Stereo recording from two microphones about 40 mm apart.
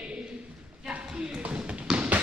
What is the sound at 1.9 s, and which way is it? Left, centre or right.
Tap, right.